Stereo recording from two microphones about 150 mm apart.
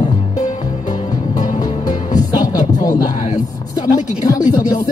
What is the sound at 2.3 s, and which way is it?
Music, 25° left (ahead or behind).